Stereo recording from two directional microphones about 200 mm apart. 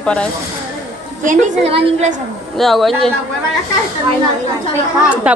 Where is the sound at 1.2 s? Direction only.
40° right (ahead or behind).